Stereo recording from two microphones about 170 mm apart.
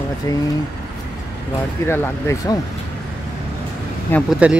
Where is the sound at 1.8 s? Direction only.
15° left (ahead or behind).